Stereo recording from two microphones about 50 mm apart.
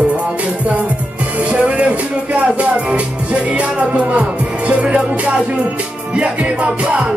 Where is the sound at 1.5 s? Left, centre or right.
Right.